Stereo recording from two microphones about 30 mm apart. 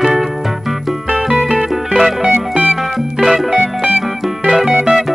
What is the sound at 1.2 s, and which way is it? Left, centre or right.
Music, centre.